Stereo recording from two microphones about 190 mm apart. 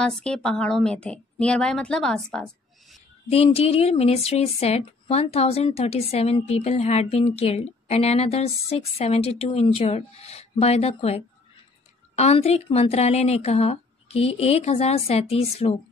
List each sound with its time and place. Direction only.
0.0 s a woman's voice: 5° left (ahead or behind)
3.3 s speech: 30° left (ahead or behind)